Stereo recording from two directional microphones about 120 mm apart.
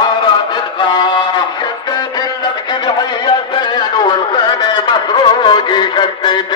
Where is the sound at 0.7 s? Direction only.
40° left (ahead or behind).